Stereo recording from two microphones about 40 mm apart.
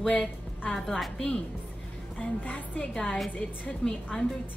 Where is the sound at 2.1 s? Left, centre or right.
Left.